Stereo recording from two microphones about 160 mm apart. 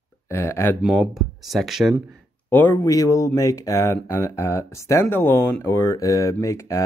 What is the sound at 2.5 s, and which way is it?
Speech, 10° left (ahead or behind).